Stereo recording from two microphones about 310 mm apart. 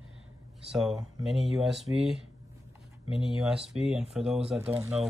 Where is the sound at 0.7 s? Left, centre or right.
Centre.